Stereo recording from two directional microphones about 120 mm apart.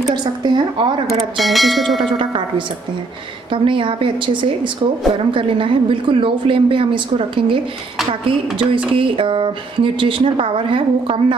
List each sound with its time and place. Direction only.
0.1 s a woman's voice: 40° right (ahead or behind)
1.4 s speech: centre (ahead or behind)
2.1 s speech: 45° right (ahead or behind)